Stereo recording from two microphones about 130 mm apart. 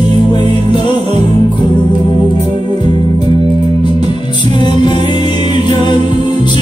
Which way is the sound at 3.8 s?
35° left (ahead or behind).